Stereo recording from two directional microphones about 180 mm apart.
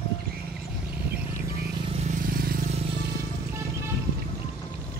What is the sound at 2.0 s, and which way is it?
Vehicle, 50° right (ahead or behind).